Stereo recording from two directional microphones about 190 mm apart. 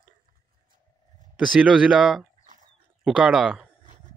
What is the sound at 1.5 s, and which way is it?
Speech, 5° right (ahead or behind).